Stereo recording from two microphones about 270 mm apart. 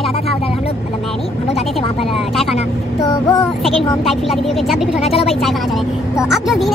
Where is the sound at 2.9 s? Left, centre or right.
Centre.